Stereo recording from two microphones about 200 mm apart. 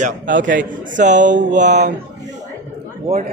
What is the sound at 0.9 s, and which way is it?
Speech, 40° right (ahead or behind).